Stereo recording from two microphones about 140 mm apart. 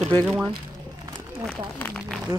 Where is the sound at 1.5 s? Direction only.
5° left (ahead or behind).